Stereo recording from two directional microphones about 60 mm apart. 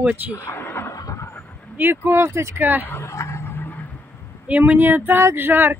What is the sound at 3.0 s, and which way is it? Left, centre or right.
Speech, left.